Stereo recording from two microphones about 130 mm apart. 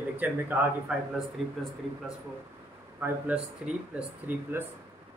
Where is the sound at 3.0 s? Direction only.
20° right (ahead or behind).